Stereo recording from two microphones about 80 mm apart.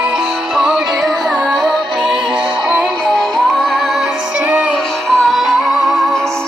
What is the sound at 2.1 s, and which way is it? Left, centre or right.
Music, right.